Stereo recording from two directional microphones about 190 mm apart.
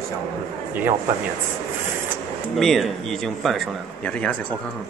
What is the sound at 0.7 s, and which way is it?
Speech, 10° right (ahead or behind).